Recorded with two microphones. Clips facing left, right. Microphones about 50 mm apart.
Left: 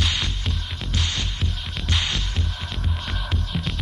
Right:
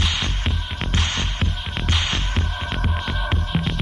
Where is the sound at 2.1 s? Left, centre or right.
Right.